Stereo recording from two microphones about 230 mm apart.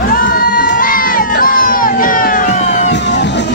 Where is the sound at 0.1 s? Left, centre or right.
Left.